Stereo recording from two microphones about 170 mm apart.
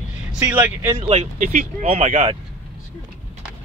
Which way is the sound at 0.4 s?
10° right (ahead or behind).